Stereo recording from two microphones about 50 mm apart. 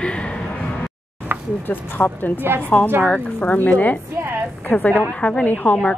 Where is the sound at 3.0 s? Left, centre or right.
Left.